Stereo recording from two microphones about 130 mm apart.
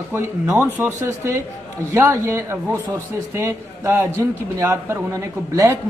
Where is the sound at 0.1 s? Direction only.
20° right (ahead or behind).